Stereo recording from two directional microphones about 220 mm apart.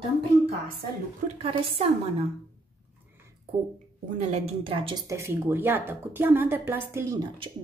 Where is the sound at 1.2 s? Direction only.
25° right (ahead or behind).